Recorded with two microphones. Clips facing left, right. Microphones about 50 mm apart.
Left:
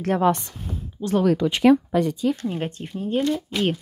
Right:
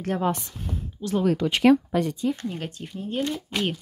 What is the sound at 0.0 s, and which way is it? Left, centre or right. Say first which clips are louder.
Speech: left 5 dB; left.